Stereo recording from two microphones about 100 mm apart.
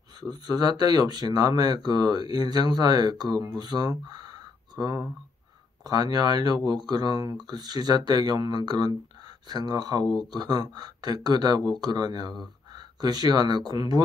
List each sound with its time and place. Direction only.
0.2 s speech: 40° right (ahead or behind)